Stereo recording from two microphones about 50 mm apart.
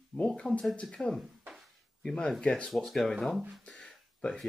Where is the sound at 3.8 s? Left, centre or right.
Centre.